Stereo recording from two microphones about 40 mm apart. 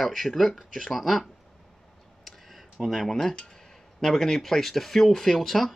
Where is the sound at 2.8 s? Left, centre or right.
Centre.